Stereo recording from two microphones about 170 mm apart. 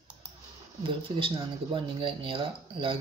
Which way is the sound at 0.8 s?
30° right (ahead or behind).